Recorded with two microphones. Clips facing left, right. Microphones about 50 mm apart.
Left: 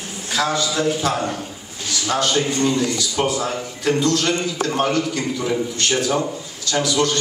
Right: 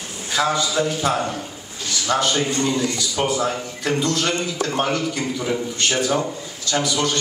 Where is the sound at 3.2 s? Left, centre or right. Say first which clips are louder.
Even; centre.